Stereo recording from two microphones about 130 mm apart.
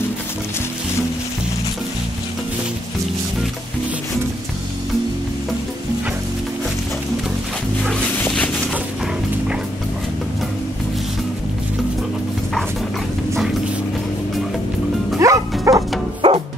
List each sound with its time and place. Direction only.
15.1 s music: 25° right (ahead or behind)
15.7 s bow-wow: 25° right (ahead or behind)
16.2 s music: 35° right (ahead or behind)